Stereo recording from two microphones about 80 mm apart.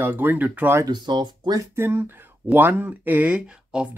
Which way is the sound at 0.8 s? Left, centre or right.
Right.